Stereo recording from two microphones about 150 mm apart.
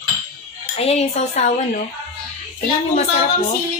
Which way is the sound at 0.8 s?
45° left (ahead or behind).